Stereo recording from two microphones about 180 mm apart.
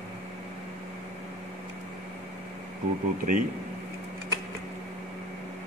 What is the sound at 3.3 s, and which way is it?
Speech, 45° right (ahead or behind).